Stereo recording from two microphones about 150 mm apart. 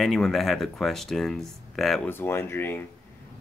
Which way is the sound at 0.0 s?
Centre (ahead or behind).